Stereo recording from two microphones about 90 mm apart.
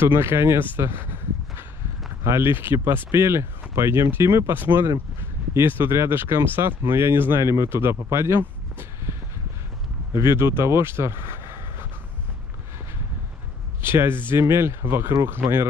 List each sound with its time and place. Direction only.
0.0 s speech: 30° right (ahead or behind)
2.2 s speech: 30° right (ahead or behind)
10.2 s speech: 25° right (ahead or behind)
13.7 s speech: 25° right (ahead or behind)